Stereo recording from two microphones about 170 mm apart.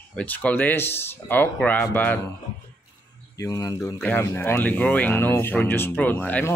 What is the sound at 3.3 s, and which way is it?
Speech, 20° left (ahead or behind).